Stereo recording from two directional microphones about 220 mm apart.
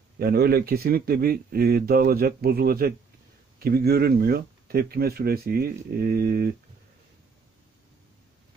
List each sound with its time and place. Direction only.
0.2 s speech: 45° right (ahead or behind)